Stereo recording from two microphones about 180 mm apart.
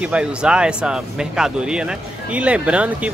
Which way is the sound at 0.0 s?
5° right (ahead or behind).